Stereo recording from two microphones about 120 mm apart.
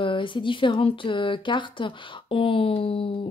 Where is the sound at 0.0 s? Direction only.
45° left (ahead or behind).